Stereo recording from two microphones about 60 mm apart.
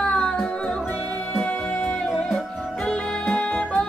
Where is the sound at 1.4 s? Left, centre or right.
Left.